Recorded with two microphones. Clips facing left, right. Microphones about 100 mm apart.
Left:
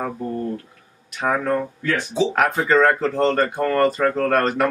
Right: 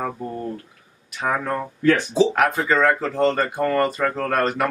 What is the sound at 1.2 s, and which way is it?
Speech, centre (ahead or behind).